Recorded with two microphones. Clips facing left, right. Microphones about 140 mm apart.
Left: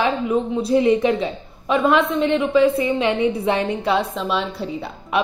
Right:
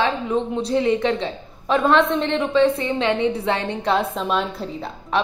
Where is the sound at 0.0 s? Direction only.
10° left (ahead or behind).